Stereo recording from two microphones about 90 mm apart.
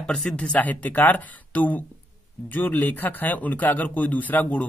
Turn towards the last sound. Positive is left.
turn(degrees=15)  # may be behind; listen again after turning